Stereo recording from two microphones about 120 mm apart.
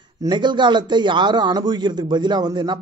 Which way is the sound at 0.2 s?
40° right (ahead or behind).